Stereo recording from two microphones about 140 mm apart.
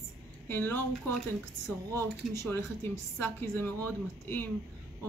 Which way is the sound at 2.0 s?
15° left (ahead or behind).